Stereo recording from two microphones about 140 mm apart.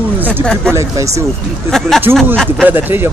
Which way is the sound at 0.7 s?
20° right (ahead or behind).